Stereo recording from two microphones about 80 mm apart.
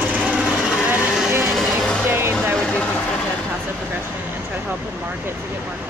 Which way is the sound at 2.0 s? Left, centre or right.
Right.